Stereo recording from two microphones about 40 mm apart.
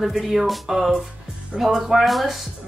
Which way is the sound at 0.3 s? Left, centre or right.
Centre.